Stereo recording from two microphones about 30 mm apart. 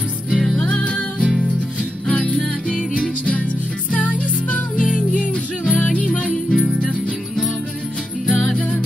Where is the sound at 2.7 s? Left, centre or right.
Left.